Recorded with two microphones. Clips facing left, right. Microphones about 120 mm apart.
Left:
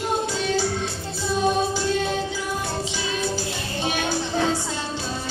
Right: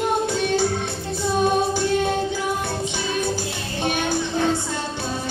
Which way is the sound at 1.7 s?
55° right (ahead or behind).